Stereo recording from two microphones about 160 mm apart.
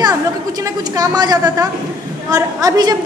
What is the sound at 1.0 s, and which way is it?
A woman's voice, 25° right (ahead or behind).